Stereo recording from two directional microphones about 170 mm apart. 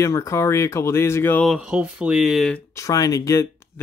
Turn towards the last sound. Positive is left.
turn(degrees=20)  # may be behind; listen again after turning